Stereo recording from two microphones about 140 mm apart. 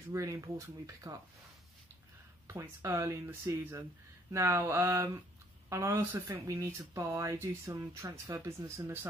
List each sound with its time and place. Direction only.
0.1 s speech: 20° right (ahead or behind)
2.4 s speech: 20° right (ahead or behind)